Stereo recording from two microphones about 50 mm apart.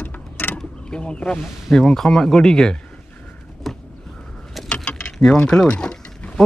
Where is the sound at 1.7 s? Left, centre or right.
Centre.